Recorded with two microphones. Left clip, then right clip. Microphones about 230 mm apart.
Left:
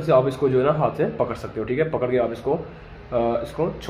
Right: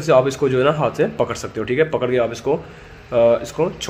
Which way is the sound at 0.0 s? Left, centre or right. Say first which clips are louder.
Right 3 dB; right.